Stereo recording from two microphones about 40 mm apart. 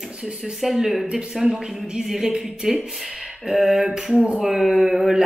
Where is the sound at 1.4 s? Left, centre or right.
Centre.